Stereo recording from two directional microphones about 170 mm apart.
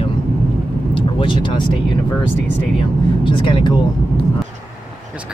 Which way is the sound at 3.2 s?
30° left (ahead or behind).